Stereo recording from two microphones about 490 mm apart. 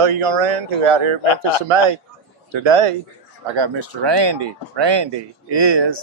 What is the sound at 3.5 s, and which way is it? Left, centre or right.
Speech, right.